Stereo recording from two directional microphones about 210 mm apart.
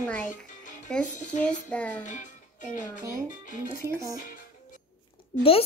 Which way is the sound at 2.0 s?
35° left (ahead or behind).